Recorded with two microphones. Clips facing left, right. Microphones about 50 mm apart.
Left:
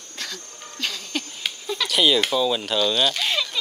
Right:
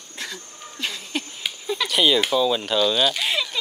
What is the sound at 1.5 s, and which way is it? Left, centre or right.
Speech, centre.